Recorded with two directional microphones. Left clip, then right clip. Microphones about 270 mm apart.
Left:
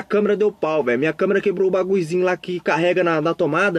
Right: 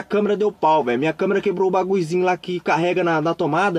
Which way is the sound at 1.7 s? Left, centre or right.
Centre.